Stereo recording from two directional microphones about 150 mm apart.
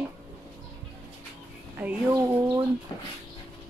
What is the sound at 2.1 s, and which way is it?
Speech, 20° right (ahead or behind).